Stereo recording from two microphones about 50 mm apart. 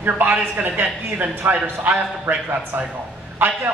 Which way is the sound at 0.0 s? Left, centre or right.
Right.